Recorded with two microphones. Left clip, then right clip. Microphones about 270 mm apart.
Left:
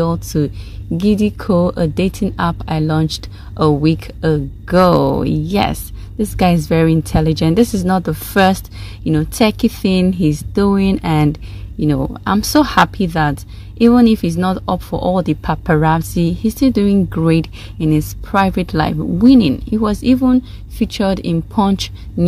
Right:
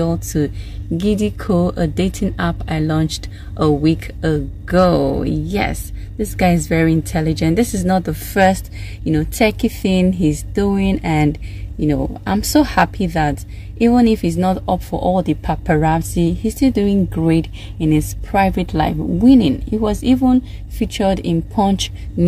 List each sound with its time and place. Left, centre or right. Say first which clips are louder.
0.0 s speech: left 2 dB; centre